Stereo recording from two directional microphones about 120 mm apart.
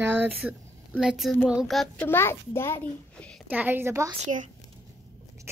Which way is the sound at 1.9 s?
15° left (ahead or behind).